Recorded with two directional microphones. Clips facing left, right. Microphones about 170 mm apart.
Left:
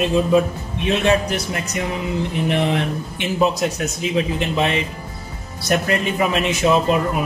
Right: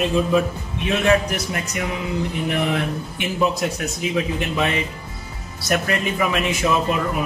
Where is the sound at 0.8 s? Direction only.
25° left (ahead or behind).